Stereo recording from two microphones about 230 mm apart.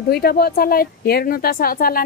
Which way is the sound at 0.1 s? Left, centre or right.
Left.